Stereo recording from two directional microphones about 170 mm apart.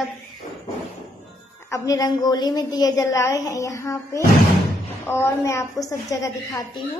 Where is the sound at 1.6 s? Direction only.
20° left (ahead or behind).